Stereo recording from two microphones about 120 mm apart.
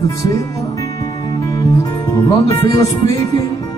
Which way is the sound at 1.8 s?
25° left (ahead or behind).